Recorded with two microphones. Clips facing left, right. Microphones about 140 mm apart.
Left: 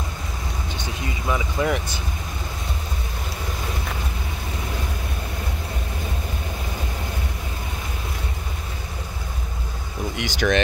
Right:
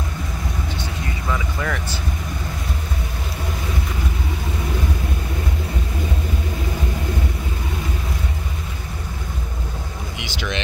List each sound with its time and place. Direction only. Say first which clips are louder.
1.3 s vehicle: left 3 dB; 20° left (ahead or behind)
10.1 s vehicle: left 7 dB; 50° left (ahead or behind)